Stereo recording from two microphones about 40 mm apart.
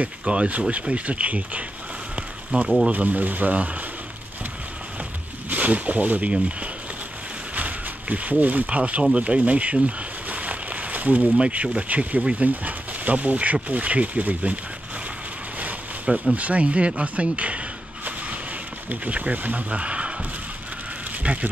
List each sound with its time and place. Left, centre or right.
0.2 s speech: right
2.1 s a sound: right
2.9 s speech: right
5.5 s speech: right
7.5 s speech: right
16.3 s speech: right
18.9 s speech: right
21.2 s a sound: right